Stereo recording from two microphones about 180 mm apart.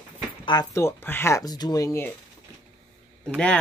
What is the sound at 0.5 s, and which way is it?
Speech, 20° left (ahead or behind).